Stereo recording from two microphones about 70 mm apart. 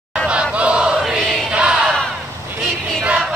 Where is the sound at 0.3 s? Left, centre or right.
Centre.